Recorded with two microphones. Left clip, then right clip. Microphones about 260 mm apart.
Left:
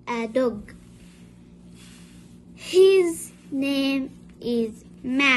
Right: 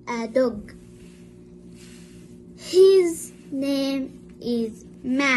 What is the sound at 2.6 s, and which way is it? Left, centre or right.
Child singing, left.